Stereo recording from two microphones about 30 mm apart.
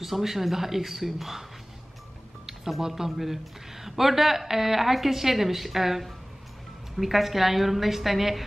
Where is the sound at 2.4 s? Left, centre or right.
Centre.